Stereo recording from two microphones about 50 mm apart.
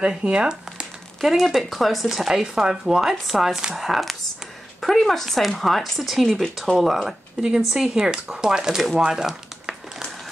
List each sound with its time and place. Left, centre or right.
0.0 s speech: centre
1.2 s speech: centre
9.0 s crumpling: centre